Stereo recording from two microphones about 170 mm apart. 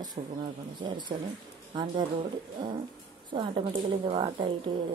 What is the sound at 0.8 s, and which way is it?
Speech, 25° right (ahead or behind).